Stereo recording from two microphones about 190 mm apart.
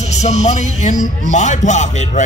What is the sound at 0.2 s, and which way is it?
Speech, 35° left (ahead or behind).